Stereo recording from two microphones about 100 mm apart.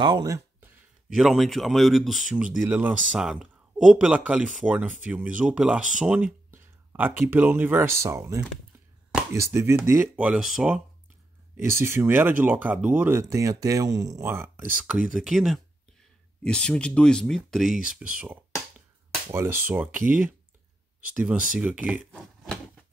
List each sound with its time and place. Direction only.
0.0 s speech: 45° right (ahead or behind)
1.1 s speech: 5° right (ahead or behind)
2.3 s speech: 10° right (ahead or behind)
3.2 s speech: 5° right (ahead or behind)
6.5 s speech: 20° right (ahead or behind)
10.2 s speech: 5° right (ahead or behind)
11.5 s speech: 25° right (ahead or behind)
14.2 s speech: 25° right (ahead or behind)
14.9 s speech: 5° right (ahead or behind)
16.4 s speech: 10° left (ahead or behind); by 18.4 s 10° right (ahead or behind)
19.3 s speech: 25° right (ahead or behind)